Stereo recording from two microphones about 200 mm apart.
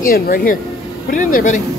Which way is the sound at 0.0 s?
45° left (ahead or behind).